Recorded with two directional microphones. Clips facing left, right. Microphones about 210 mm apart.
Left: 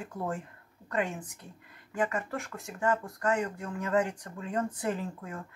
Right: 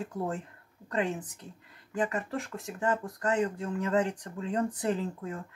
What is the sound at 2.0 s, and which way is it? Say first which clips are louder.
Speech: right 1 dB; 20° right (ahead or behind).